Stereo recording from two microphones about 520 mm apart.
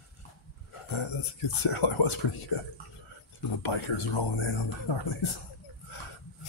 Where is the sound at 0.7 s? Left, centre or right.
Left.